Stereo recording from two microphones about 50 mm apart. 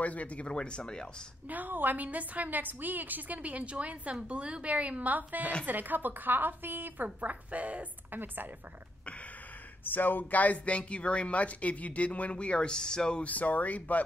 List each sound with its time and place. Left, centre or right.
0.0 s speech: left
1.5 s a woman's voice: right
7.2 s a woman's voice: right
9.8 s speech: left; by 13.2 s centre
13.2 s speech: left